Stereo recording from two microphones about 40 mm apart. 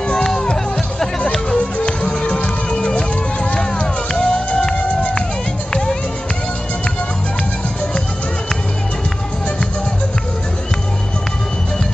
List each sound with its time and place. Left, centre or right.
0.1 s music: centre
1.5 s music: left